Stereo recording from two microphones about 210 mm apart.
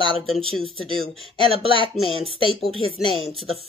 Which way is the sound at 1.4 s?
25° right (ahead or behind).